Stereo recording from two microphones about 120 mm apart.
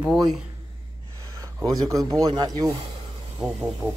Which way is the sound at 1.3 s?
25° right (ahead or behind).